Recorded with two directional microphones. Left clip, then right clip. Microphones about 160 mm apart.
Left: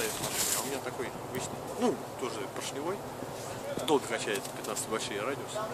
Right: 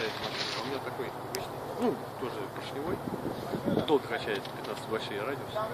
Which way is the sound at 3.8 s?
50° left (ahead or behind).